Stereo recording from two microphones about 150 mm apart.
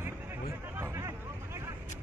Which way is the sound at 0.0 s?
15° right (ahead or behind).